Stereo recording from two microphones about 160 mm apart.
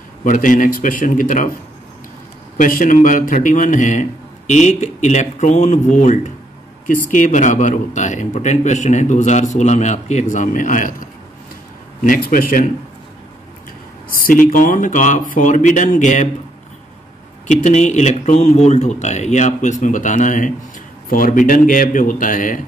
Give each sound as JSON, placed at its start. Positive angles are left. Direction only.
{"t": 0.2, "sound": "speech", "side_deg": 55}
{"t": 2.5, "sound": "speech", "side_deg": 55}
{"t": 14.5, "sound": "speech", "side_deg": 55}
{"t": 17.5, "sound": "speech", "side_deg": 45}